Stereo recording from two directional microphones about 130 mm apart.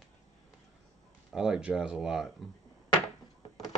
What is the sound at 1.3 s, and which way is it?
Speech, 5° right (ahead or behind).